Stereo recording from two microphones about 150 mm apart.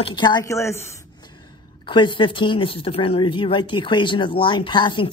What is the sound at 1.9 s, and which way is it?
A woman's voice, 35° left (ahead or behind).